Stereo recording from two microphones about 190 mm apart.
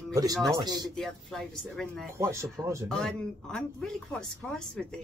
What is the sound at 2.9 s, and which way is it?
A woman's voice, 5° left (ahead or behind).